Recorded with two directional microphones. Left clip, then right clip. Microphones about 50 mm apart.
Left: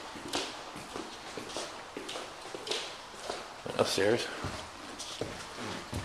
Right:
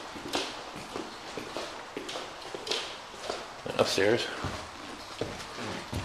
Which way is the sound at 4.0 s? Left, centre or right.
Centre.